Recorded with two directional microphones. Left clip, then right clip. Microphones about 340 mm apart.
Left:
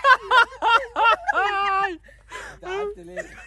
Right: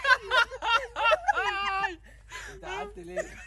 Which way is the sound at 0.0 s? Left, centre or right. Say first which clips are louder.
Left 7 dB; centre.